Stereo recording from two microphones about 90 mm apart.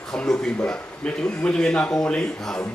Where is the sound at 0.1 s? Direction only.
5° left (ahead or behind).